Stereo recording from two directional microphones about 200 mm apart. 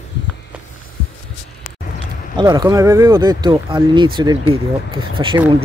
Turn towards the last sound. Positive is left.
turn(degrees=-25)  # may be behind; listen again after turning